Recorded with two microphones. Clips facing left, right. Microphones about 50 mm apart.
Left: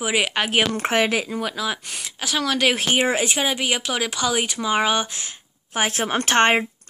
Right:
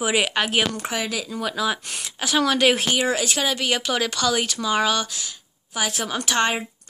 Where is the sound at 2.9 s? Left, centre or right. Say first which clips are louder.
Left 2 dB; left.